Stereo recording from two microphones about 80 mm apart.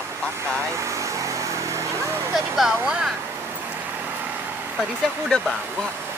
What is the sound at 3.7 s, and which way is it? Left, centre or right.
Vehicle, centre.